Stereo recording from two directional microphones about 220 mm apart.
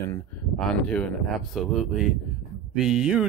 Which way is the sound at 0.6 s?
5° left (ahead or behind).